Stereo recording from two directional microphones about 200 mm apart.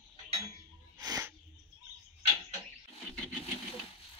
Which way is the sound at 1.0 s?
15° right (ahead or behind).